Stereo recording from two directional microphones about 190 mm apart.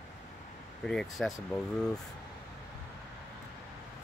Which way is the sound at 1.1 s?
Centre (ahead or behind).